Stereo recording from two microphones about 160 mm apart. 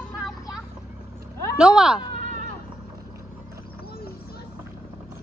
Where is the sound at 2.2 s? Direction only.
55° right (ahead or behind).